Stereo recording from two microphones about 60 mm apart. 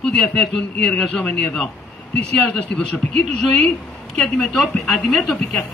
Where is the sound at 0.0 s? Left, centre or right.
Centre.